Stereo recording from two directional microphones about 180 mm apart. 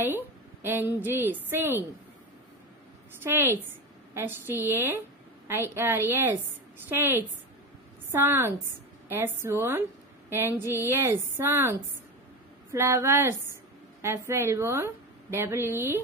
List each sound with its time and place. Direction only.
0.0 s a woman's voice: 10° right (ahead or behind)
3.2 s a woman's voice: 15° right (ahead or behind)